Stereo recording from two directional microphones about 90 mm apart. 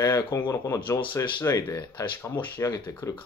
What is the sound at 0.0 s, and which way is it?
Speech, 40° left (ahead or behind).